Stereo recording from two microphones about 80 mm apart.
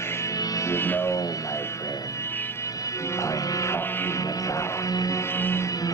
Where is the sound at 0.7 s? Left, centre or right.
Left.